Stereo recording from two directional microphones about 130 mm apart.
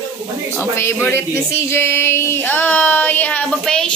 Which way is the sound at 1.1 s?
20° left (ahead or behind).